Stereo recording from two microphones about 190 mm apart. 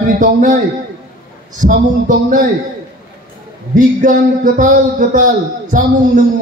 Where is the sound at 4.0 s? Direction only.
45° right (ahead or behind).